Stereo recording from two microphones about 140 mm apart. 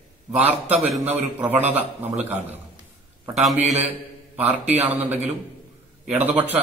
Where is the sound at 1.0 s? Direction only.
10° right (ahead or behind).